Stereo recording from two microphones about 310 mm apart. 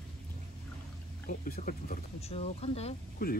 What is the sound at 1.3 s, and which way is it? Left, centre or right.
Speech, left.